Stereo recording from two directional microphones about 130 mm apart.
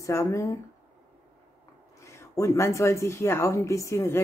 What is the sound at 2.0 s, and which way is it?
Speech, 20° left (ahead or behind).